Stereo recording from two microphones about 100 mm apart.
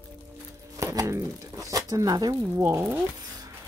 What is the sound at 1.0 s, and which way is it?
Speech, 30° right (ahead or behind).